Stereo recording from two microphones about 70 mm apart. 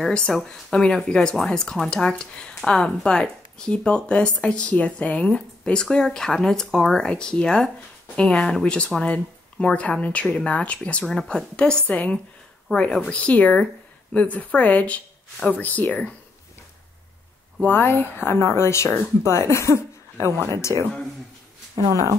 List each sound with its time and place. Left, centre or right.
0.0 s speech: centre
11.1 s a woman's voice: centre
17.6 s speech: left
21.7 s speech: right